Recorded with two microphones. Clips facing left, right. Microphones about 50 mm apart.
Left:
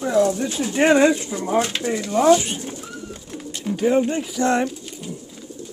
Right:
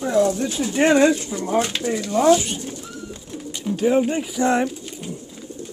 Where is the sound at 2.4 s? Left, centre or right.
Centre.